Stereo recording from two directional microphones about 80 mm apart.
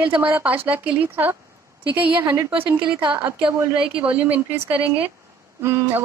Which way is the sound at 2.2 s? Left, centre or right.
Right.